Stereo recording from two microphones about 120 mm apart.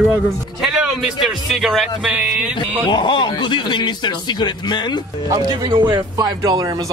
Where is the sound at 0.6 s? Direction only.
5° right (ahead or behind).